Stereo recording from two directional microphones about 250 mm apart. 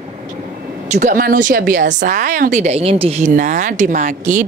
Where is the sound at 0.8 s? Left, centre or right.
Right.